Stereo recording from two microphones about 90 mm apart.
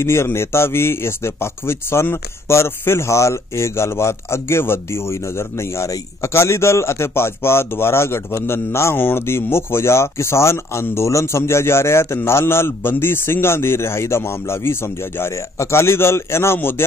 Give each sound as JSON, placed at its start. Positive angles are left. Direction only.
{"t": 0.0, "sound": "a man's voice", "side_deg": 30}